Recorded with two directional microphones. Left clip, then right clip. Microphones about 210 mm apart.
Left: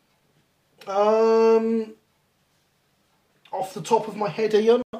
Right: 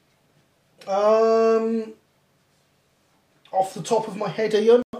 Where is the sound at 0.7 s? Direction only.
35° left (ahead or behind).